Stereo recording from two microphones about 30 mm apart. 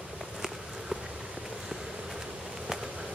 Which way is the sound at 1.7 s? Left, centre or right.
Centre.